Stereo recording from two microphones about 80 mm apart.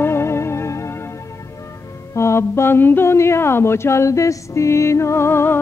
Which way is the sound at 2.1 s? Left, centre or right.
Left.